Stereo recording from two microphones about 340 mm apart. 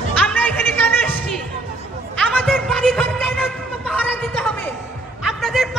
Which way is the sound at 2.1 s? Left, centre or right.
Centre.